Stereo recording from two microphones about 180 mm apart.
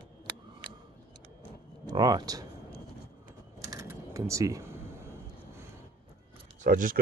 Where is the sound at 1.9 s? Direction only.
20° right (ahead or behind).